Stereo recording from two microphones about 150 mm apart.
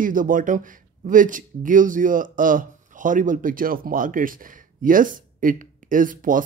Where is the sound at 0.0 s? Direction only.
65° right (ahead or behind).